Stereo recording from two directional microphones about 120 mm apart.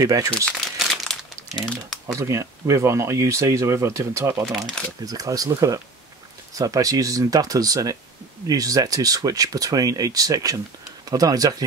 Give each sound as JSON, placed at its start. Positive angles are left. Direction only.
{"t": 0.0, "sound": "speech", "side_deg": -30}
{"t": 0.7, "sound": "crumpling", "side_deg": 0}
{"t": 2.1, "sound": "speech", "side_deg": -25}